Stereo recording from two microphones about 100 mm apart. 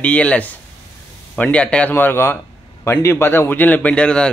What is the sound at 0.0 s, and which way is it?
A man's voice, 10° left (ahead or behind).